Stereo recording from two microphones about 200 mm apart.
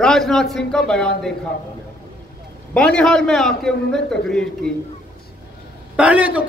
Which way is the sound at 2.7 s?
5° left (ahead or behind).